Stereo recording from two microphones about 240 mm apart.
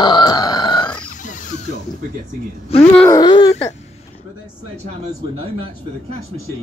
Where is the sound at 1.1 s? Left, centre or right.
Left.